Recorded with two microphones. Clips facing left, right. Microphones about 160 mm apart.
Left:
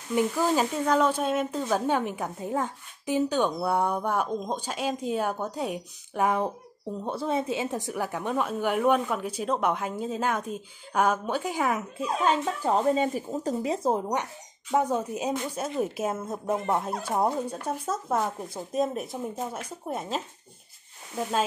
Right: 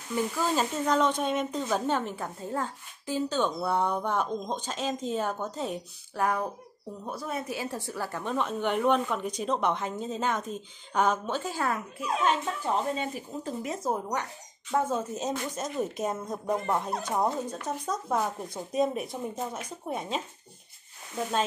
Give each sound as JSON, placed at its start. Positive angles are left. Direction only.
{"t": 0.1, "sound": "speech", "side_deg": 15}
{"t": 12.0, "sound": "speech", "side_deg": 35}
{"t": 13.8, "sound": "speech", "side_deg": 25}
{"t": 14.7, "sound": "speech", "side_deg": 15}